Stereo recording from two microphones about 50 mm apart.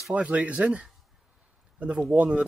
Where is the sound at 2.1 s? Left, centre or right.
Right.